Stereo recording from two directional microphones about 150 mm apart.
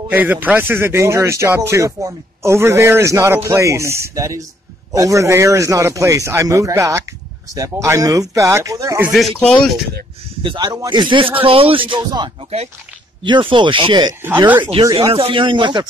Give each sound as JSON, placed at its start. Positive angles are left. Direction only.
{"t": 0.1, "sound": "speech", "side_deg": -10}
{"t": 9.1, "sound": "speech", "side_deg": 0}
{"t": 10.4, "sound": "speech", "side_deg": -30}